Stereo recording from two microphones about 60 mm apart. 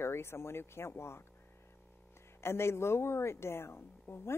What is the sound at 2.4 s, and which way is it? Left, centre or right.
Speech, left.